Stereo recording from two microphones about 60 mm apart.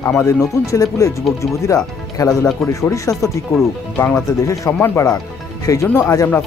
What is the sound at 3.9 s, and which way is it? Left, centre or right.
Speech, left.